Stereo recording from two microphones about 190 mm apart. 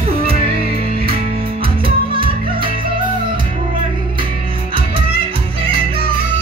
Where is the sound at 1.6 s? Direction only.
30° right (ahead or behind).